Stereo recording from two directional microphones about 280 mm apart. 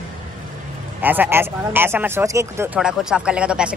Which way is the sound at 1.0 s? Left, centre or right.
Centre.